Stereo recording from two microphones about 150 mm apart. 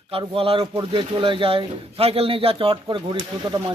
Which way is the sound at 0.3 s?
40° right (ahead or behind).